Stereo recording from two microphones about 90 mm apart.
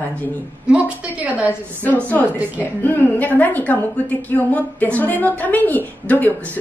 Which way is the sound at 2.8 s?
20° left (ahead or behind).